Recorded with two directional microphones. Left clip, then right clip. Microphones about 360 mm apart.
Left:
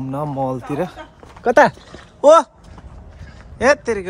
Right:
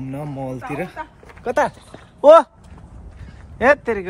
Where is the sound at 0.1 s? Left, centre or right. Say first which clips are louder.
Left 8 dB; centre.